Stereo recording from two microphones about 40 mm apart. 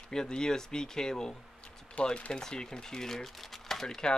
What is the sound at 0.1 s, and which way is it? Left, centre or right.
Speech, centre.